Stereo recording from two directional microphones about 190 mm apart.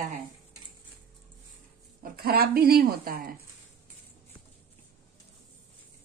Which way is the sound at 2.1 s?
55° right (ahead or behind).